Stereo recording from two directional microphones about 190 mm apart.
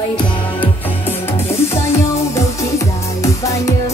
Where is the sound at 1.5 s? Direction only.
15° left (ahead or behind).